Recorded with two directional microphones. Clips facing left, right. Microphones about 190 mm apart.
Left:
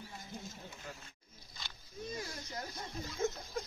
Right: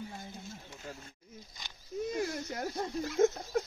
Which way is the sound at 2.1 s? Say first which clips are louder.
Right 9 dB; 75° right (ahead or behind).